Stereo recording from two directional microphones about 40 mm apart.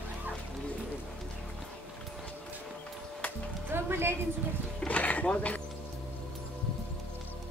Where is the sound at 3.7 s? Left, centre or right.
Right.